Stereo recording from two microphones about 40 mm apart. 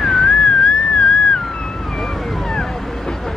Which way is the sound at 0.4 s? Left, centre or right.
Centre.